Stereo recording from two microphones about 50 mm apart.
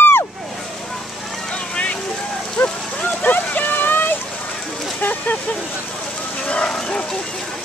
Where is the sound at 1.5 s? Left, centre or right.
Left.